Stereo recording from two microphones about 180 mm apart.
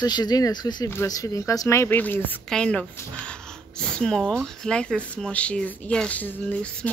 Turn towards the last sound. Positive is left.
turn(degrees=5)  # may be behind; listen again after turning